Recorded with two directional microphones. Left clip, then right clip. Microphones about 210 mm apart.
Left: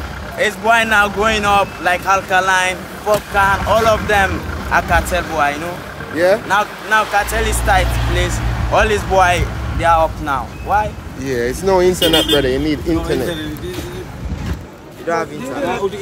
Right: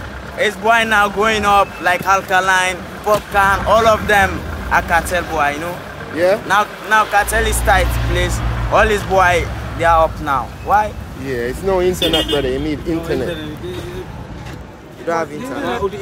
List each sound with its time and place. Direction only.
0.4 s speech: 5° right (ahead or behind)
4.6 s speech: 5° right (ahead or behind)
6.1 s speech: 10° left (ahead or behind)
6.5 s speech: 20° right (ahead or behind)
11.2 s speech: 10° left (ahead or behind)
15.1 s speech: 10° right (ahead or behind)